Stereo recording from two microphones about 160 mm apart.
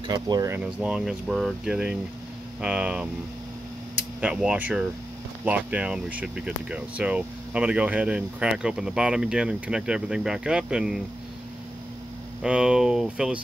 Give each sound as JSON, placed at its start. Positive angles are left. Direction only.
{"t": 0.1, "sound": "speech", "side_deg": -25}
{"t": 0.8, "sound": "speech", "side_deg": 0}
{"t": 4.2, "sound": "speech", "side_deg": -5}
{"t": 12.4, "sound": "speech", "side_deg": -5}